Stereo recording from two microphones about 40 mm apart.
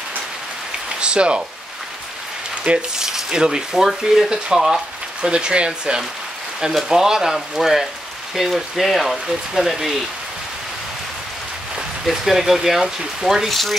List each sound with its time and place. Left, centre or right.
0.9 s speech: right
2.7 s speech: right
3.0 s speech: centre
12.1 s speech: centre
13.5 s speech: centre